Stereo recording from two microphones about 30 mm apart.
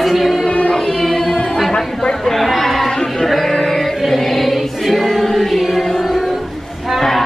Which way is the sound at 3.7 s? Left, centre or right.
Centre.